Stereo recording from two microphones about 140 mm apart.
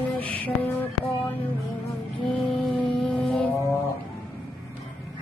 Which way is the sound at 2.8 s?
35° left (ahead or behind).